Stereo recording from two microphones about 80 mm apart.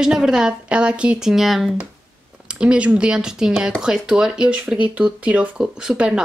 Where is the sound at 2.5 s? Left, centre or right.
Centre.